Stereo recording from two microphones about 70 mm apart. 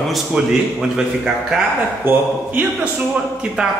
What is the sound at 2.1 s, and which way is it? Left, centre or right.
Speech, right.